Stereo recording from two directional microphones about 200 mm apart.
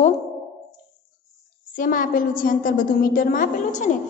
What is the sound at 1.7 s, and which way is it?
A woman's voice, 45° left (ahead or behind).